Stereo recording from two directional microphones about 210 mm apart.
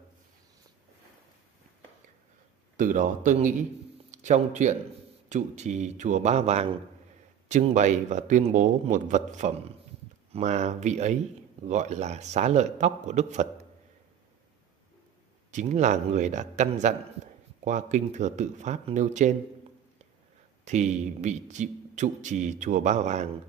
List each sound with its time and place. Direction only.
2.8 s speech: 35° right (ahead or behind)
15.5 s speech: 35° right (ahead or behind)
20.6 s speech: 35° right (ahead or behind)